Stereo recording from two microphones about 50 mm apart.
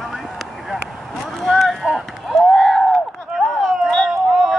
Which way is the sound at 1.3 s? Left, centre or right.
Centre.